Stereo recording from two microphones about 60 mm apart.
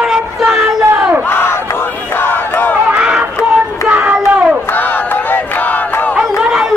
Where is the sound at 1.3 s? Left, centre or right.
Left.